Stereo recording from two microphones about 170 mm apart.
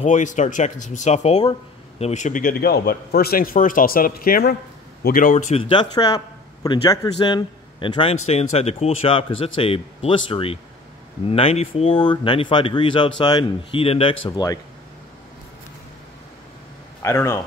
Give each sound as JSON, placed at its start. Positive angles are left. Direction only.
{"t": 0.0, "sound": "a man's voice", "side_deg": 45}
{"t": 5.6, "sound": "a man's voice", "side_deg": 25}
{"t": 17.0, "sound": "speech", "side_deg": 15}